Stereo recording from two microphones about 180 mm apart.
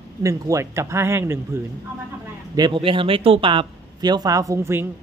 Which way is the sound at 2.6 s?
25° right (ahead or behind).